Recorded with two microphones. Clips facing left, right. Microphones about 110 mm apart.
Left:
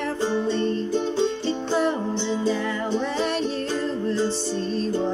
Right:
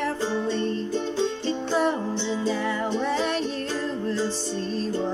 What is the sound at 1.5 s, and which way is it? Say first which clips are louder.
Music: left 1 dB; centre (ahead or behind).